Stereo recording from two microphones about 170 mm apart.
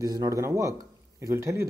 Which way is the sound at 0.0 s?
20° right (ahead or behind).